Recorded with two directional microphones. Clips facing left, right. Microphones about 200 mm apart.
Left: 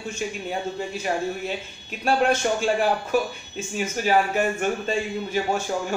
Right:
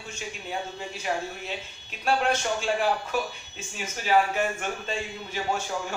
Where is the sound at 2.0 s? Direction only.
45° left (ahead or behind).